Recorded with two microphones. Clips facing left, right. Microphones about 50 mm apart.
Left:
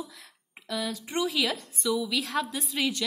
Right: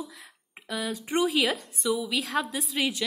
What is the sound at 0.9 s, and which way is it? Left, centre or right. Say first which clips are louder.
Speech: right 4 dB; right.